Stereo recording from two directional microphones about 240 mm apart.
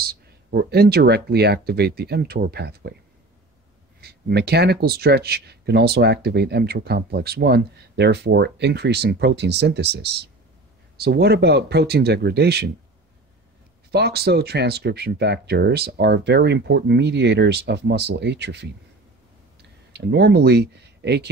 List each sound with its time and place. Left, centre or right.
0.0 s speech: right
4.0 s speech: right
13.9 s speech: right
19.9 s speech: right